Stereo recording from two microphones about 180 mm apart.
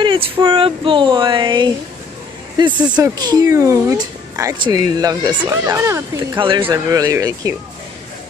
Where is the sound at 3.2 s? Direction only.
20° right (ahead or behind).